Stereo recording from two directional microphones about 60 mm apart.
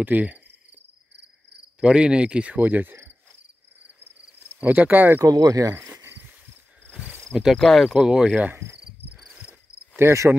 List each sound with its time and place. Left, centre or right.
0.0 s cricket: right
1.8 s cricket: centre
2.5 s cricket: right
4.4 s cricket: right
5.2 s speech: right
5.9 s a sound: right
6.1 s a sound: right
7.5 s speech: centre
7.9 s cricket: centre
9.9 s cricket: right